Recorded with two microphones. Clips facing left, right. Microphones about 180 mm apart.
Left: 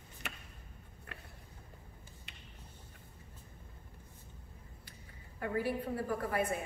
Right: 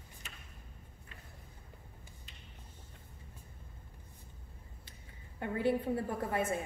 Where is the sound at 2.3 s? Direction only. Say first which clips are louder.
Left 1 dB; 70° left (ahead or behind).